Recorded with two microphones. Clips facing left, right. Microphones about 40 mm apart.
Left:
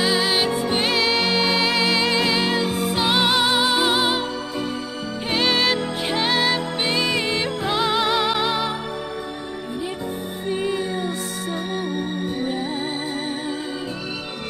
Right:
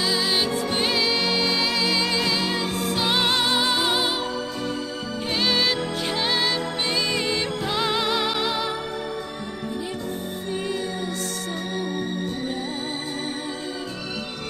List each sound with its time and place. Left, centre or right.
0.0 s music: centre
10.5 s music: left
12.4 s music: centre